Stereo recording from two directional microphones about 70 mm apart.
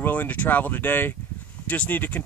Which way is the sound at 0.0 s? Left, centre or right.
Left.